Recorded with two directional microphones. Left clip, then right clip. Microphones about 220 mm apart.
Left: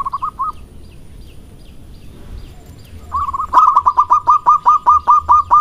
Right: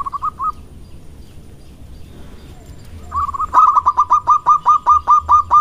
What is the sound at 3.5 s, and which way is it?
Bird, 10° left (ahead or behind).